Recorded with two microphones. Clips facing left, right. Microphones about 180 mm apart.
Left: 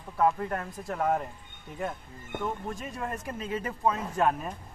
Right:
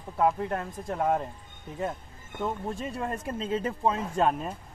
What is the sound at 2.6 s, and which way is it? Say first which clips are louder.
Speech: right 3 dB; 30° right (ahead or behind).